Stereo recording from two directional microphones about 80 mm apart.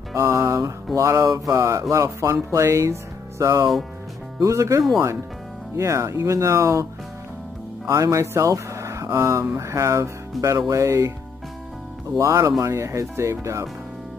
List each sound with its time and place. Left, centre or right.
0.1 s music: right
0.9 s speech: right
7.9 s speech: right
12.2 s speech: right